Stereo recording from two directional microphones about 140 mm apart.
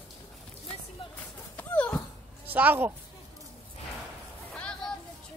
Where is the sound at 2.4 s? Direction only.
15° right (ahead or behind).